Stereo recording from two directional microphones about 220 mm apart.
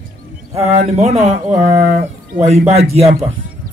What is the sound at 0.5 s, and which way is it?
A man's voice, 30° right (ahead or behind).